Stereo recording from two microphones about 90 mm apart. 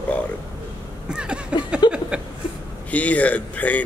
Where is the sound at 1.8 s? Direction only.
50° left (ahead or behind).